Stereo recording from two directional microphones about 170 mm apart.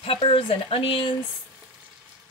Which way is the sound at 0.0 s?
30° left (ahead or behind).